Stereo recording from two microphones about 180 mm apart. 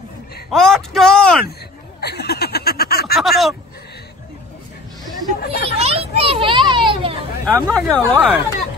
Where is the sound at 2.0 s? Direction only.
65° left (ahead or behind).